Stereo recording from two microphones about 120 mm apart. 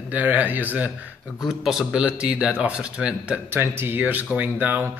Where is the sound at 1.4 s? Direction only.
Centre (ahead or behind).